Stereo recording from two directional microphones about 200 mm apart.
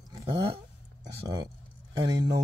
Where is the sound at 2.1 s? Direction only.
20° right (ahead or behind).